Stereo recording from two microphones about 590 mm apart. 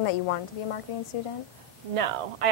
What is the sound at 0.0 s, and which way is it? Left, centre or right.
Speech, left.